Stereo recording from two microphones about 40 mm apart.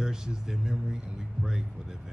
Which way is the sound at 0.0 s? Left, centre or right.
Centre.